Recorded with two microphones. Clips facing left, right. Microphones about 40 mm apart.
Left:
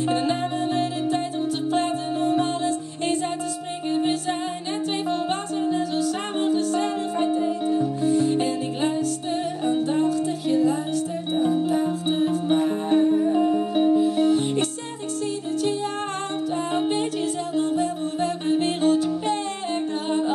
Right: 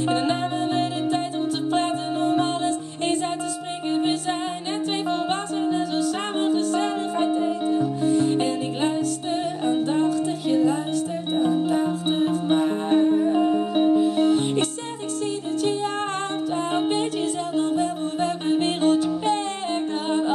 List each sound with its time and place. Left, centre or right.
0.1 s music: right
11.3 s music: right
17.6 s music: right